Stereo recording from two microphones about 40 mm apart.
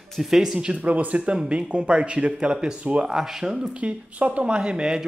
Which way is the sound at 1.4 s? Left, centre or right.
Right.